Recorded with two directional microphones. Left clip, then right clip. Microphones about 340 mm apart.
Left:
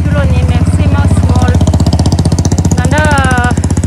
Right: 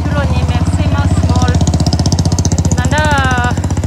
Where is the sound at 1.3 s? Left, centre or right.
Centre.